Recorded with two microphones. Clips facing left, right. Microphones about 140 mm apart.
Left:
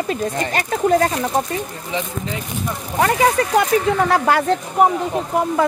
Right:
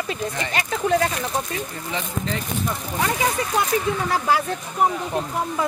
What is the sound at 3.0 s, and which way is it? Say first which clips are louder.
Speech: left 8 dB; 65° left (ahead or behind).